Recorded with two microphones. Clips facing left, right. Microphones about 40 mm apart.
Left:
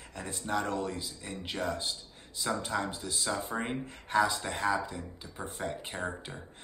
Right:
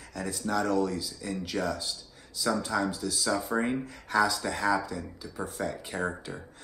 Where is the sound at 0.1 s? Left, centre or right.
Left.